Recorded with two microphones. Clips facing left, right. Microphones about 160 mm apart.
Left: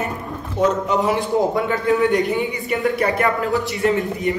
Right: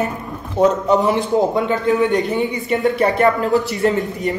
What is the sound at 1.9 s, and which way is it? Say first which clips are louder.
Speech: even; 20° right (ahead or behind).